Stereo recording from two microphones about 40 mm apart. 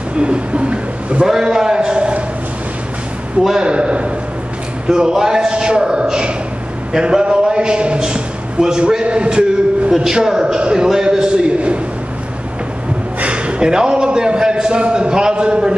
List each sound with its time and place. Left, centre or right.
0.2 s a man's voice: right
1.2 s a man's voice: centre
3.6 s a man's voice: right
13.2 s a man's voice: right